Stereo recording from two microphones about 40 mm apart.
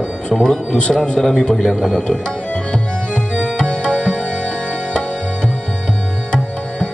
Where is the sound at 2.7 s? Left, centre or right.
Centre.